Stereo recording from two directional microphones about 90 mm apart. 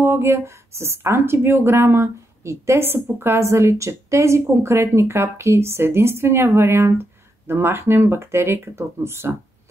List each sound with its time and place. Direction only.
0.0 s a woman's voice: 25° right (ahead or behind)